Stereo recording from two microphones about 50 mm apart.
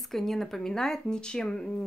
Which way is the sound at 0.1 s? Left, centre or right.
Centre.